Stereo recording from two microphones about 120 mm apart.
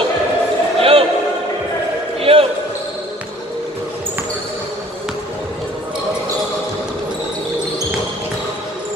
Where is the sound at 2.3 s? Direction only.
50° right (ahead or behind).